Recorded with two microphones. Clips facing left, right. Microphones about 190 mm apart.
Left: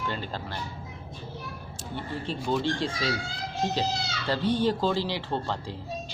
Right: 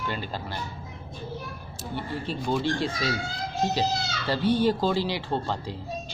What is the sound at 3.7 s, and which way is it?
Speech, 10° right (ahead or behind).